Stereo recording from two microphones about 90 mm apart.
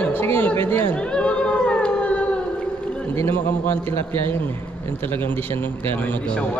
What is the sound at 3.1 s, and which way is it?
A man's voice, 25° left (ahead or behind).